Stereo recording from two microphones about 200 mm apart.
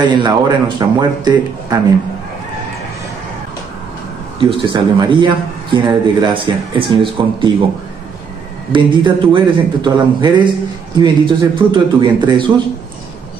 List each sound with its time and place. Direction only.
0.2 s speech: 20° right (ahead or behind)
4.4 s speech: 25° right (ahead or behind)
8.7 s speech: 25° right (ahead or behind)